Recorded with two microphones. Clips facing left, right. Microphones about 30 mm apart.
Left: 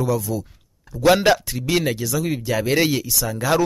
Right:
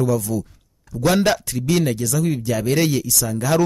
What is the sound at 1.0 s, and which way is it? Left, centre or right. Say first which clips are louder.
Speech: left 2 dB; centre.